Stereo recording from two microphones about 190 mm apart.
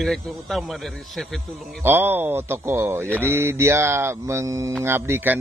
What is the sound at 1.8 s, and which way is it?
Speech, 10° right (ahead or behind).